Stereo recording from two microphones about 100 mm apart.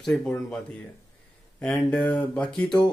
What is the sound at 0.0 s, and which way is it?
Speech, 10° left (ahead or behind).